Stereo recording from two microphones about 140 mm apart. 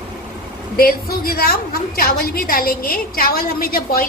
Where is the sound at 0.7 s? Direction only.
90° left.